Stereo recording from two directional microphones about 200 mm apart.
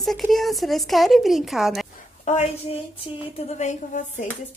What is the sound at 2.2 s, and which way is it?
Speech, 35° left (ahead or behind).